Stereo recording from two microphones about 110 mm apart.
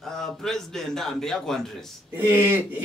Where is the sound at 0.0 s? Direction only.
5° left (ahead or behind).